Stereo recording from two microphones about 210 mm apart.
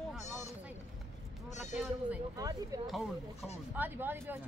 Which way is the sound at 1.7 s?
5° right (ahead or behind).